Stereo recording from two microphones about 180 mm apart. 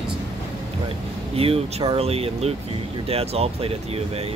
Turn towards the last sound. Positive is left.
turn(degrees=-35)  # may be behind; listen again after turning